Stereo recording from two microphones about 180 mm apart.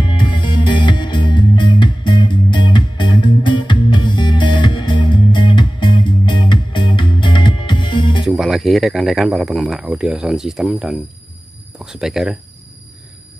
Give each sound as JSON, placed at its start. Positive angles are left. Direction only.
{"t": 0.0, "sound": "music", "side_deg": 25}
{"t": 8.3, "sound": "speech", "side_deg": 0}